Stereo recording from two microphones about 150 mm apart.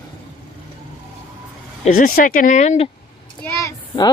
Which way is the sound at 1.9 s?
75° left (ahead or behind).